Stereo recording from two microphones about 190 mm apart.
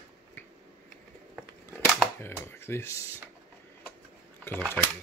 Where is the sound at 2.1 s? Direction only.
10° left (ahead or behind).